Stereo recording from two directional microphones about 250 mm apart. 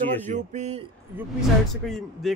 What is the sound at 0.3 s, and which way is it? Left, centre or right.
Speech, right.